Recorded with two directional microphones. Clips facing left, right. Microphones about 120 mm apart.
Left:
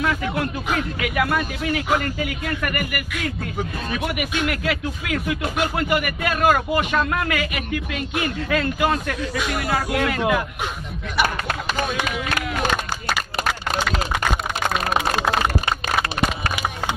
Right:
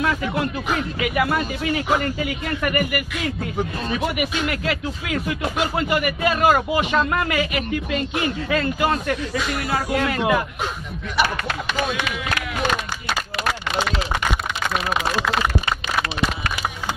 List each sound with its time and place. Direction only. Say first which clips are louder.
0.0 s speech: right 1 dB; 5° right (ahead or behind)
11.2 s speech: left 1 dB; 45° left (ahead or behind)
15.9 s a sound: left 1 dB; 50° left (ahead or behind)